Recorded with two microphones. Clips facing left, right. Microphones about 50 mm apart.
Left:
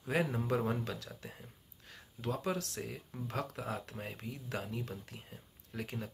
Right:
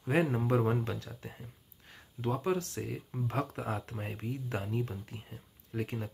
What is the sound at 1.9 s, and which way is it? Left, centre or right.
Speech, centre.